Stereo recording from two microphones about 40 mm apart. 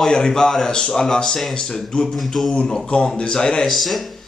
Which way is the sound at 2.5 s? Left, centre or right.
Left.